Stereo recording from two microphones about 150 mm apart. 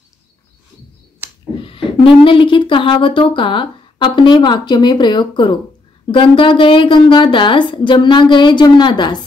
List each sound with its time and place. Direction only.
1.6 s speech: 35° left (ahead or behind)